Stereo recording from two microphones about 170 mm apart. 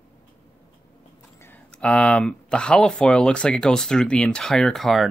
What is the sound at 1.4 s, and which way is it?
Speech, 10° left (ahead or behind).